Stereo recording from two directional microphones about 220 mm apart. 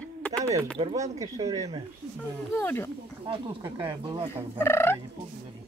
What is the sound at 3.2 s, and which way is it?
Speech, 15° right (ahead or behind).